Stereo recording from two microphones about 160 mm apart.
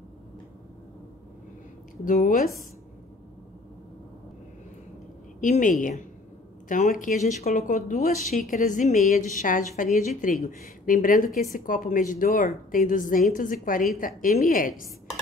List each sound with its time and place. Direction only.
2.0 s a woman's voice: 60° left (ahead or behind)
5.4 s a woman's voice: 55° left (ahead or behind)